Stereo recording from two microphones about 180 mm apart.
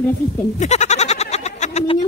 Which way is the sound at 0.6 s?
40° left (ahead or behind).